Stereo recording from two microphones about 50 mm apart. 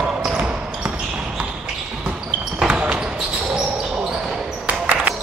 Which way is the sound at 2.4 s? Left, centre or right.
Centre.